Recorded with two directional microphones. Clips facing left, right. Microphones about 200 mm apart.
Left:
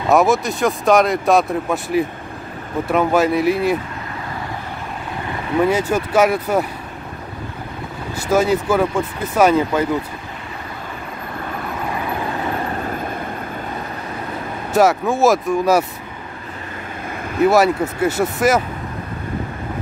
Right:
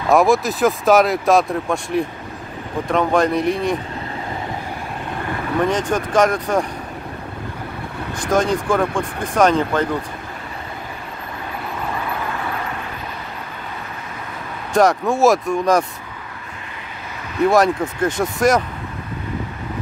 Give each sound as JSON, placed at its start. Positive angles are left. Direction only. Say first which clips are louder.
{"t": 0.1, "sound": "speech", "louder": "even", "side_deg": 0}
{"t": 5.6, "sound": "speech", "louder": "left 3 dB", "side_deg": 5}
{"t": 8.1, "sound": "speech", "louder": "left 2 dB", "side_deg": 5}
{"t": 12.5, "sound": "vehicle", "louder": "left 5 dB", "side_deg": 40}
{"t": 14.7, "sound": "speech", "louder": "even", "side_deg": 5}
{"t": 17.4, "sound": "speech", "louder": "left 1 dB", "side_deg": 5}